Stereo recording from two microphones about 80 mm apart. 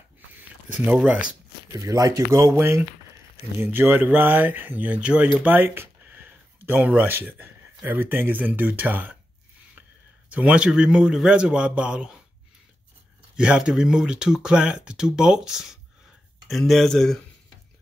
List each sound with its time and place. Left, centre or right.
0.3 s zipper: right
0.9 s speech: centre
1.7 s speech: right
10.3 s speech: centre
13.4 s speech: centre